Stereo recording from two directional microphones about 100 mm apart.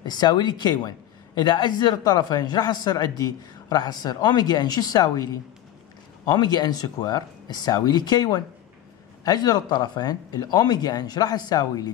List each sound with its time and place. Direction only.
0.0 s a man's voice: 45° left (ahead or behind)